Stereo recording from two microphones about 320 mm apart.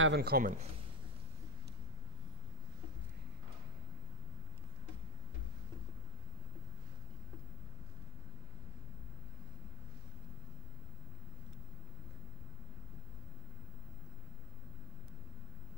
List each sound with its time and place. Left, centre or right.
0.0 s a man's voice: right